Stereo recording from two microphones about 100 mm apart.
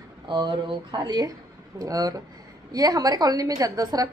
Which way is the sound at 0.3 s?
50° right (ahead or behind).